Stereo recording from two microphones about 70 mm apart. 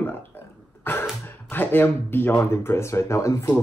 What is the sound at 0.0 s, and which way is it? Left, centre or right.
Burping, left.